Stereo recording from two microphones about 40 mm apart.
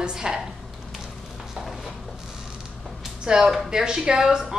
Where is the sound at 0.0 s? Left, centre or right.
Centre.